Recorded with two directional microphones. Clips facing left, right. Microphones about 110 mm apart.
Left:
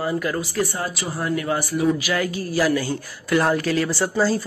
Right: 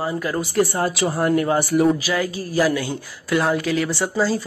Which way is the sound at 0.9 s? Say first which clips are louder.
Right 8 dB; 60° right (ahead or behind).